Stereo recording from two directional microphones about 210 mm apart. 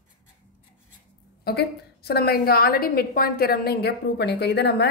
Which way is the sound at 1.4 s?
50° left (ahead or behind).